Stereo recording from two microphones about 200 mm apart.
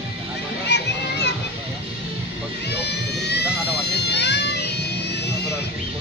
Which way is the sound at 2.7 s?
55° left (ahead or behind).